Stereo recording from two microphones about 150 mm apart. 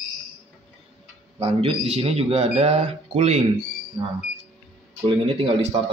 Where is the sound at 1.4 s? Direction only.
40° right (ahead or behind).